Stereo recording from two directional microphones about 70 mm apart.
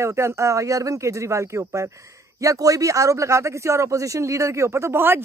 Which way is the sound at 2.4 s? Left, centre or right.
Right.